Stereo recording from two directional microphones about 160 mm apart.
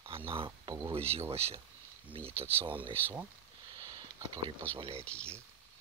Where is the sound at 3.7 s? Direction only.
25° right (ahead or behind).